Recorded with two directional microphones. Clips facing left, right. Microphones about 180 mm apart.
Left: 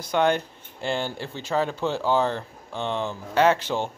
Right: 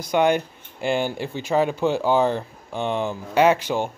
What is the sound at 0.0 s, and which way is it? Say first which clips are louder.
Speech: right 3 dB; 15° right (ahead or behind).